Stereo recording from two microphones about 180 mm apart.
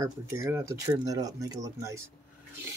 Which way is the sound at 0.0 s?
15° right (ahead or behind).